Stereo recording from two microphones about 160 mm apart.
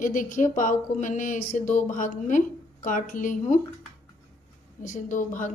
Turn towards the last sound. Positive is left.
turn(degrees=55)  # may be behind; listen again after turning